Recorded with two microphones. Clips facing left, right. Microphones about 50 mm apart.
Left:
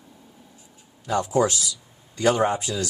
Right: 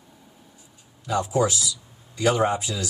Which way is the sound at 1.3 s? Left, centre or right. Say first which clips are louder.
Left 2 dB; left.